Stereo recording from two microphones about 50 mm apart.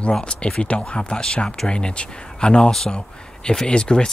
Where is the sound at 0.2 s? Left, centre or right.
Left.